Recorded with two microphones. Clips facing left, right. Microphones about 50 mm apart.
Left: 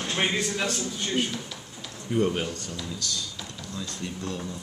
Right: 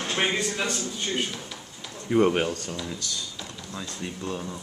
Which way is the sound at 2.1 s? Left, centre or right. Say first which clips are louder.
Right 4 dB; right.